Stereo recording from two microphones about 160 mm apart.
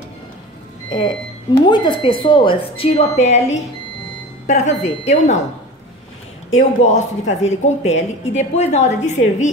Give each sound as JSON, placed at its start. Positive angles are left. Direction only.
{"t": 0.8, "sound": "a woman's voice", "side_deg": 30}
{"t": 6.8, "sound": "a woman's voice", "side_deg": 45}